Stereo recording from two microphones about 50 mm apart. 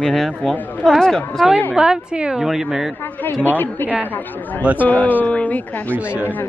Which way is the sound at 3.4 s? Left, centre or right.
Left.